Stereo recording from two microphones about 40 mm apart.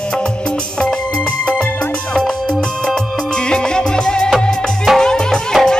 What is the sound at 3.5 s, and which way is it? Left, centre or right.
Music, centre.